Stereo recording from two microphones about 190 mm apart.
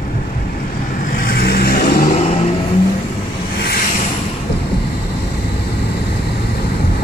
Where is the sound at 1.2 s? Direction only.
55° left (ahead or behind).